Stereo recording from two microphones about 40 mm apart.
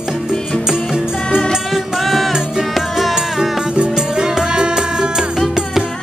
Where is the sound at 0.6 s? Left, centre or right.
Centre.